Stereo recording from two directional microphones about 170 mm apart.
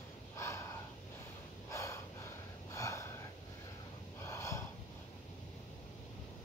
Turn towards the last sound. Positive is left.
turn(degrees=15)  # may be behind; listen again after turning